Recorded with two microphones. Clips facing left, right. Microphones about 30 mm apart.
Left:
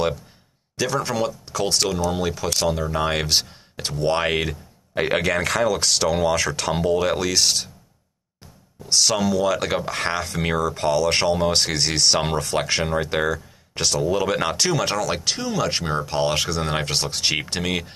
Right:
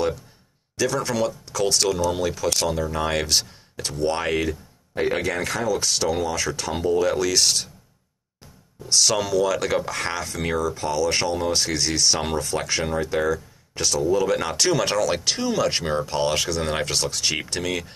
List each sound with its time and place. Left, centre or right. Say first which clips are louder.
1.0 s speech: even; centre; by 4.6 s left
4.9 s speech: left 2 dB; left
6.3 s speech: left 4 dB; left
6.9 s speech: right 1 dB; left
7.2 s speech: even; centre
8.8 s speech: left 1 dB; centre
9.8 s speech: left 2 dB; left
14.6 s speech: right 1 dB; centre; by 17.8 s left